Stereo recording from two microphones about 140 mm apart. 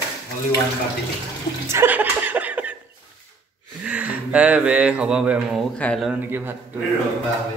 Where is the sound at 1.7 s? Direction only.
15° right (ahead or behind).